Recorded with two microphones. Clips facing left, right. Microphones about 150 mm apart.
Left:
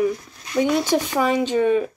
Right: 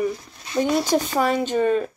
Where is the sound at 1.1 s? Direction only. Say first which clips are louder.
Left 3 dB; 10° left (ahead or behind).